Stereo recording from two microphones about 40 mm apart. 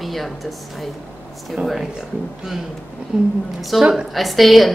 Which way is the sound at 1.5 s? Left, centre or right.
Centre.